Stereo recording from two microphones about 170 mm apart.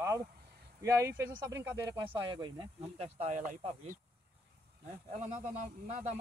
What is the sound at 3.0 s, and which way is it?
Speech, 40° right (ahead or behind).